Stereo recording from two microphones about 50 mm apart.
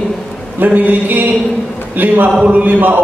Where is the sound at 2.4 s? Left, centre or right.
Right.